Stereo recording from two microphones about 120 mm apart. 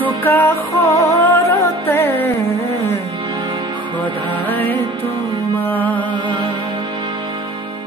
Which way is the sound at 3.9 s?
15° left (ahead or behind).